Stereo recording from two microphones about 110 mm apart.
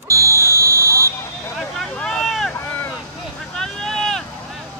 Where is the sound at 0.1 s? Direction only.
25° right (ahead or behind).